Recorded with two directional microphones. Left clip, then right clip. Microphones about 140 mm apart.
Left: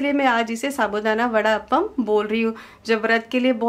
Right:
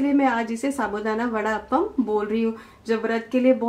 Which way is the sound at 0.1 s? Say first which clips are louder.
Left 2 dB; 40° left (ahead or behind).